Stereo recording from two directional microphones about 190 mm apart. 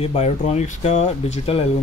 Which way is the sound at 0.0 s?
35° left (ahead or behind).